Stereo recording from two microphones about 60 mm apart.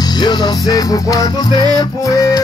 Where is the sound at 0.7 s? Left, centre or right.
Left.